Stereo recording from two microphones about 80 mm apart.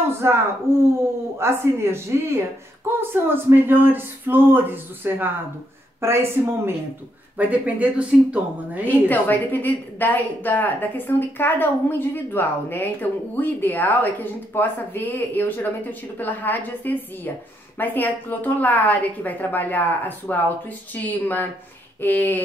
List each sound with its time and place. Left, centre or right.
0.2 s a woman's voice: right
7.3 s speech: centre
8.8 s speech: left